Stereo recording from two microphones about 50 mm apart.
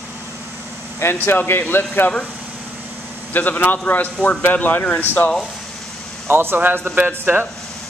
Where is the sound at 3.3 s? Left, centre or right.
Left.